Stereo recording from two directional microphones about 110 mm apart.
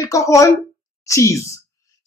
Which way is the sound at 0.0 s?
30° left (ahead or behind).